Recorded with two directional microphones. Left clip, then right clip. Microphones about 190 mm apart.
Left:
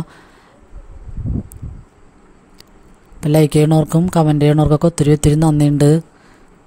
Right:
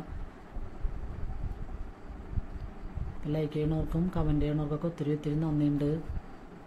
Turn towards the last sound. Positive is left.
turn(degrees=60)  # may be behind; listen again after turning